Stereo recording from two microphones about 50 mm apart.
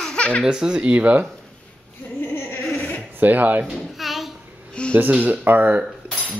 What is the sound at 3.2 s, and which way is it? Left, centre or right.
Speech, right.